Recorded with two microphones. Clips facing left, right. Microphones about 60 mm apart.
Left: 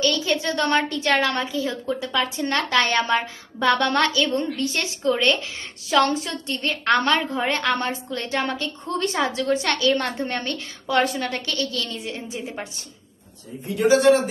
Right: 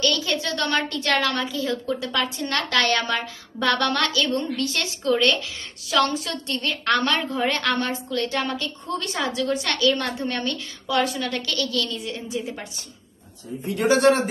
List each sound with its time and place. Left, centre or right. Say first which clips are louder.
0.0 s a woman's voice: left 2 dB; left
13.7 s a man's voice: left 2 dB; right